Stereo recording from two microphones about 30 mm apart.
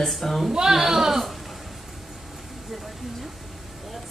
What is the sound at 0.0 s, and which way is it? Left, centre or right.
Speech, centre.